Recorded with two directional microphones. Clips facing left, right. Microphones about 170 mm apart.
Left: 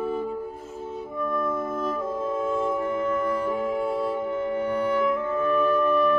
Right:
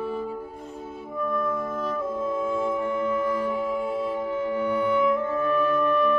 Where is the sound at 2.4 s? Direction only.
45° left (ahead or behind).